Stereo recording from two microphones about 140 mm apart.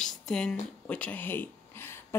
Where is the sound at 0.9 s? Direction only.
10° left (ahead or behind).